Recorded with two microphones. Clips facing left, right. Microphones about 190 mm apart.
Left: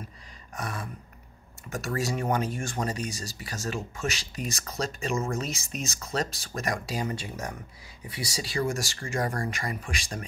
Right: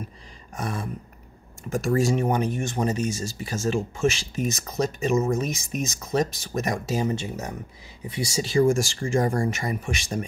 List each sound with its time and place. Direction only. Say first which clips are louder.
0.6 s speech: right 5 dB; 25° right (ahead or behind)